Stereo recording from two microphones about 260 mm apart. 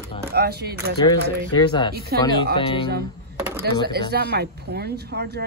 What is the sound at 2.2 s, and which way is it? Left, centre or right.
Speech, centre.